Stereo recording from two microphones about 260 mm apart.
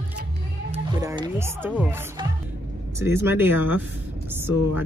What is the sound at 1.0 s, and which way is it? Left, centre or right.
Speech, centre.